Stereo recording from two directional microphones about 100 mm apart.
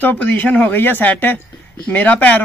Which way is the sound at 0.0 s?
20° left (ahead or behind).